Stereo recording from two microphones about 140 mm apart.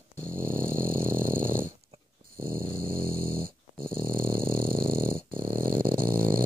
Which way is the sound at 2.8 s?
90° right.